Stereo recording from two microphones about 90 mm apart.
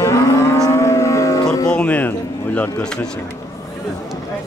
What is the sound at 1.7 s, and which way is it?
Speech, 15° left (ahead or behind).